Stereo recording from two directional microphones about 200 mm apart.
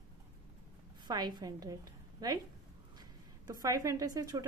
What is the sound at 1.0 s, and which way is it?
A woman's voice, 20° right (ahead or behind).